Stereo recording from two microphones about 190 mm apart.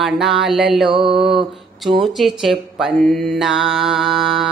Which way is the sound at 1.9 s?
Centre (ahead or behind).